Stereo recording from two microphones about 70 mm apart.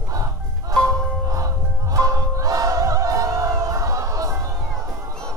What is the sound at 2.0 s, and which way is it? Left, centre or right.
Music, right.